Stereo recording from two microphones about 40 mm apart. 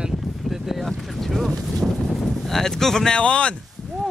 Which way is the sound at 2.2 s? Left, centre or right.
Centre.